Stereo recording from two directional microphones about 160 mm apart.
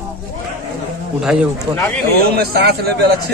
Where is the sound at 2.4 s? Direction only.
80° right.